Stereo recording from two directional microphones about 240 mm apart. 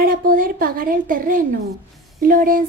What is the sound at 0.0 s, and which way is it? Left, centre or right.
Speech, right.